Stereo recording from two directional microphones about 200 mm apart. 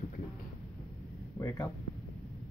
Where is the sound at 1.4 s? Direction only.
15° left (ahead or behind).